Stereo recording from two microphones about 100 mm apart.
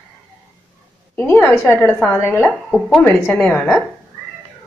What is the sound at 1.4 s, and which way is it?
Speech, 25° left (ahead or behind).